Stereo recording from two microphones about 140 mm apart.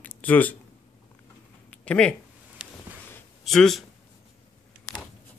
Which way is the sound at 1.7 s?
10° left (ahead or behind).